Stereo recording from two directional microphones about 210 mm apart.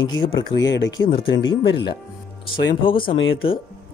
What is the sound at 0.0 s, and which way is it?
Speech, 65° left (ahead or behind).